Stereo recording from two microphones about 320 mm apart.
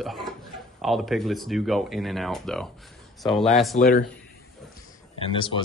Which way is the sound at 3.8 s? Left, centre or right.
Left.